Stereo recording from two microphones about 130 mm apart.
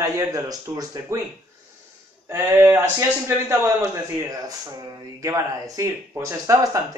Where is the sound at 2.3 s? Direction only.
20° right (ahead or behind).